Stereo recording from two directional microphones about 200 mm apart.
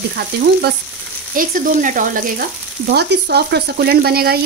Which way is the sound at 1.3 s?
45° right (ahead or behind).